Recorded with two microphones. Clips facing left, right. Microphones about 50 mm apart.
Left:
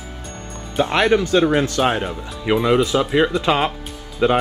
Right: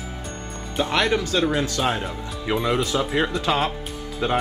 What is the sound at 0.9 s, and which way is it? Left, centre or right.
Speech, left.